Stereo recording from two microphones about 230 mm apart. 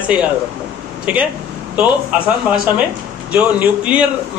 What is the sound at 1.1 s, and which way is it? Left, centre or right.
Speech, centre.